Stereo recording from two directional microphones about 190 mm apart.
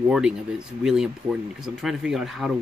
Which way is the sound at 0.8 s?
5° right (ahead or behind).